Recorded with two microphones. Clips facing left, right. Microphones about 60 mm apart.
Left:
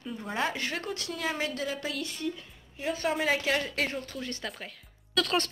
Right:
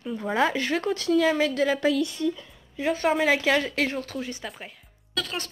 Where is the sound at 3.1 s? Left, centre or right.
Right.